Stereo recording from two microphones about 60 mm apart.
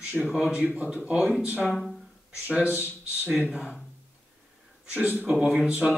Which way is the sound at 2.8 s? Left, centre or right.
Right.